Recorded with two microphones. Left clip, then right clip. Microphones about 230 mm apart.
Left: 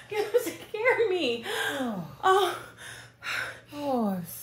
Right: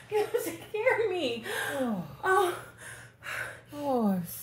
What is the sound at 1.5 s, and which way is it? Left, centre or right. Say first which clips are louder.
Speech: left 3 dB; centre.